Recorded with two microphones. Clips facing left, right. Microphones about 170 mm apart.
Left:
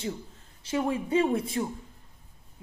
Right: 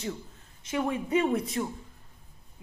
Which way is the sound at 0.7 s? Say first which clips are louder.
Left 1 dB; 30° left (ahead or behind).